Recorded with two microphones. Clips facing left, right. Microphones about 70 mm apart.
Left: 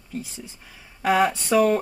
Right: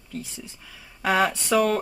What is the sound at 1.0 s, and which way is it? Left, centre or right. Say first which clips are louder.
Speech: left 2 dB; centre.